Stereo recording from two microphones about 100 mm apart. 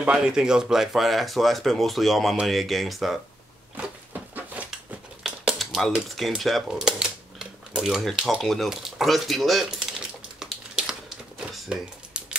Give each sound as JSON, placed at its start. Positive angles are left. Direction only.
{"t": 0.0, "sound": "speech", "side_deg": -10}
{"t": 3.7, "sound": "a sound", "side_deg": -15}
{"t": 5.2, "sound": "speech", "side_deg": 0}
{"t": 10.4, "sound": "crumpling", "side_deg": -5}